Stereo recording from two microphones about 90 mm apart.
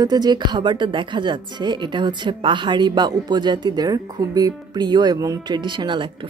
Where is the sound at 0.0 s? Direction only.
50° right (ahead or behind).